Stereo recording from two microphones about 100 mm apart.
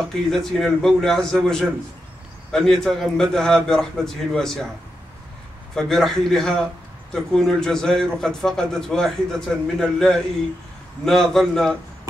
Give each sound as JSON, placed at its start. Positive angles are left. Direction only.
{"t": 0.0, "sound": "a man's voice", "side_deg": 5}
{"t": 5.8, "sound": "a man's voice", "side_deg": 5}